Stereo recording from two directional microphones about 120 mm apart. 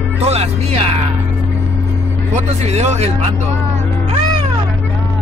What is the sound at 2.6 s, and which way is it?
Speech, 70° right (ahead or behind).